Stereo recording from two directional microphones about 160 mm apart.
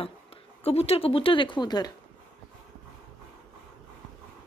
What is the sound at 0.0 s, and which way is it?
Speech, 35° left (ahead or behind).